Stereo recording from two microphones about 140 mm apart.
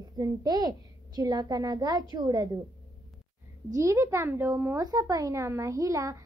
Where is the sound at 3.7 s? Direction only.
20° right (ahead or behind).